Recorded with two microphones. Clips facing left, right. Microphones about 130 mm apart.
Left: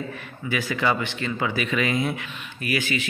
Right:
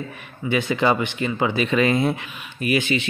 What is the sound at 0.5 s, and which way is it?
Speech, 25° right (ahead or behind).